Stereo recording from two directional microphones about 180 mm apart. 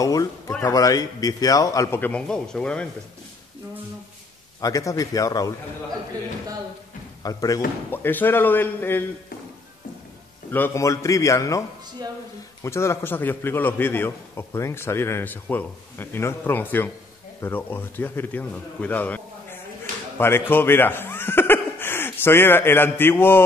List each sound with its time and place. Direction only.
0.0 s a man's voice: 20° left (ahead or behind)
4.6 s speech: 20° left (ahead or behind)
7.2 s a man's voice: 20° left (ahead or behind)
10.5 s a man's voice: 15° left (ahead or behind)
12.6 s a man's voice: 15° left (ahead or behind)